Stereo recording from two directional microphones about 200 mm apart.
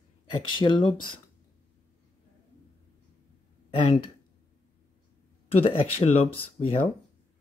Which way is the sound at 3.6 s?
30° left (ahead or behind).